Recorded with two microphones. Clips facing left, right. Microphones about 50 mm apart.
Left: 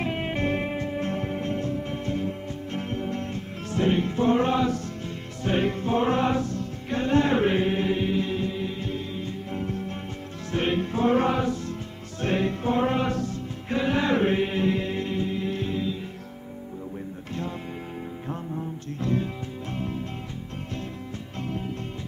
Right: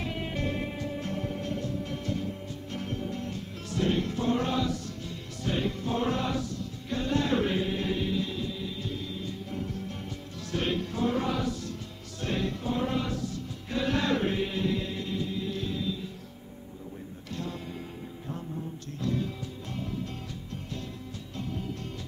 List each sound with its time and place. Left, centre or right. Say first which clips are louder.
0.0 s music: left 6 dB; left
13.8 s mantra: left 5 dB; left
17.3 s music: left 3 dB; left
18.9 s music: left 4 dB; left
21.4 s music: left 4 dB; left